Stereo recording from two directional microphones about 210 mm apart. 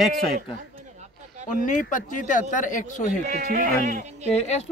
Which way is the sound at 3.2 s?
45° right (ahead or behind).